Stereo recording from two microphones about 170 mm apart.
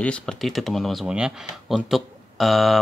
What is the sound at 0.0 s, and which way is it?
Speech, 5° left (ahead or behind).